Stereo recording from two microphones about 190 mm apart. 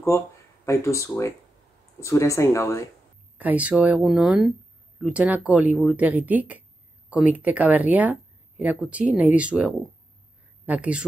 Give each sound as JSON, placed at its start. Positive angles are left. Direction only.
{"t": 0.7, "sound": "speech", "side_deg": 15}
{"t": 3.3, "sound": "speech", "side_deg": -10}